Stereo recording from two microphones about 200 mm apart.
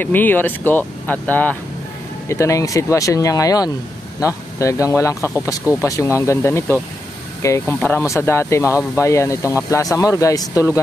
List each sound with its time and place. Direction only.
0.0 s speech: 10° left (ahead or behind)